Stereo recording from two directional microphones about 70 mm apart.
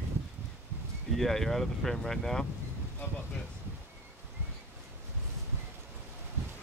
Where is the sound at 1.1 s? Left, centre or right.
Centre.